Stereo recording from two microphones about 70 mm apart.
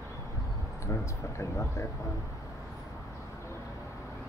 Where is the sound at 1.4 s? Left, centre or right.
Left.